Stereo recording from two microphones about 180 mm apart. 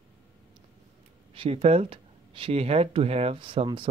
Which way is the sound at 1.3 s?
30° right (ahead or behind).